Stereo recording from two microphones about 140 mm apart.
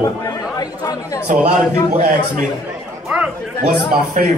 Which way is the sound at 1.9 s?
60° right (ahead or behind).